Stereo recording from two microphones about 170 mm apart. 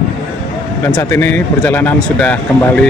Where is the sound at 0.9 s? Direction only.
10° left (ahead or behind).